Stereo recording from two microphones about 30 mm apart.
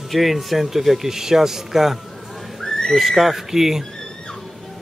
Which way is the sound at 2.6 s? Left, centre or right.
Centre.